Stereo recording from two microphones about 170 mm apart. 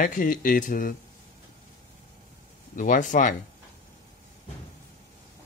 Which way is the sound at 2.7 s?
50° left (ahead or behind).